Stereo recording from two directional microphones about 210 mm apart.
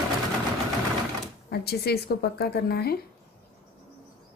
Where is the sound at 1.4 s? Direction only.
50° left (ahead or behind).